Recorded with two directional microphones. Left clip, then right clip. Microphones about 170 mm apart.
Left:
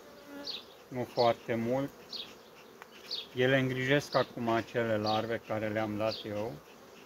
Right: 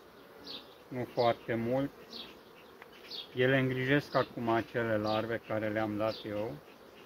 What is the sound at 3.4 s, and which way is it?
Speech, 25° left (ahead or behind).